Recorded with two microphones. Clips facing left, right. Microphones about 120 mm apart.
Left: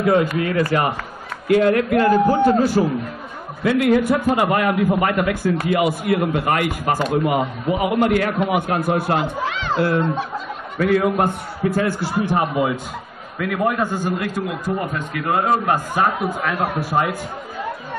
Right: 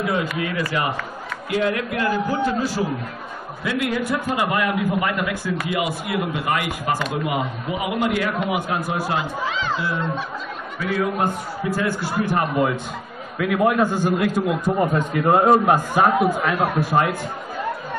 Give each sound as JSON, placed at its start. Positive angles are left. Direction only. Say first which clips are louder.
{"t": 0.0, "sound": "a man's voice", "louder": "left 6 dB", "side_deg": 45}
{"t": 12.2, "sound": "a man's voice", "louder": "left 2 dB", "side_deg": 20}
{"t": 13.4, "sound": "a man's voice", "louder": "right 2 dB", "side_deg": -5}
{"t": 14.5, "sound": "a man's voice", "louder": "right 4 dB", "side_deg": -30}
{"t": 15.4, "sound": "a man's voice", "louder": "right 3 dB", "side_deg": -15}